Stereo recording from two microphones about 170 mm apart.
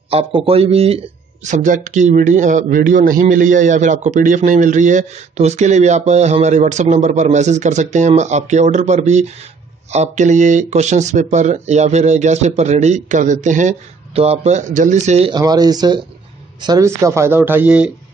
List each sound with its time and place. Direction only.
0.1 s speech: 35° right (ahead or behind)
15.3 s speech: 25° right (ahead or behind); by 17.9 s 5° right (ahead or behind)